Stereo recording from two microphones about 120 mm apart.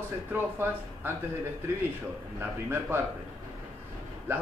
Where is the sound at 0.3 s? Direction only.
20° right (ahead or behind).